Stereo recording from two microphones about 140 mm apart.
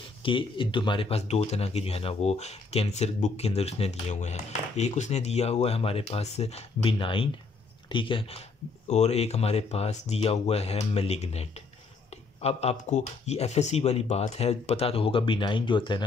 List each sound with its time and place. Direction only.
0.2 s speech: 40° left (ahead or behind)
8.8 s speech: 50° left (ahead or behind); by 16.0 s 35° left (ahead or behind)